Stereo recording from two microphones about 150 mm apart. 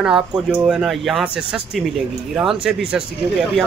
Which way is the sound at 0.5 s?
5° right (ahead or behind).